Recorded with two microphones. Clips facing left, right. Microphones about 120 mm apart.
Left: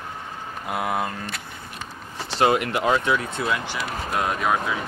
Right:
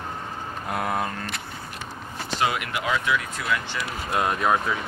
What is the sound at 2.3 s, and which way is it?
Speech, 35° left (ahead or behind).